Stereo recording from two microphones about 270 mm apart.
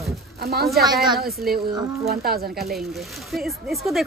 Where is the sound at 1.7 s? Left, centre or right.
Centre.